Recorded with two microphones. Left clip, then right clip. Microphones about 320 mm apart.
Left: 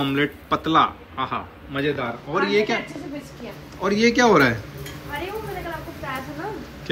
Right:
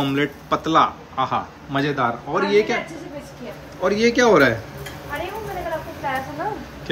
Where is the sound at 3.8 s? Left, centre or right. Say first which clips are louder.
Right 1 dB; centre.